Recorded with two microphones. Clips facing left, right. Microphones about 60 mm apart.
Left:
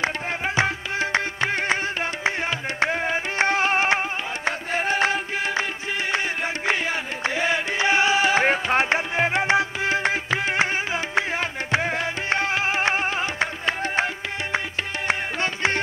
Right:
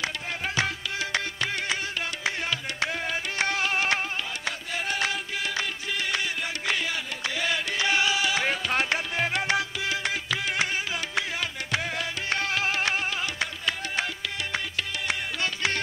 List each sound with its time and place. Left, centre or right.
0.6 s music: left
2.8 s music: left